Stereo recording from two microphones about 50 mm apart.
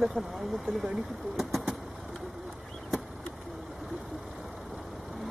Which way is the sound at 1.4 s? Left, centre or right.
Centre.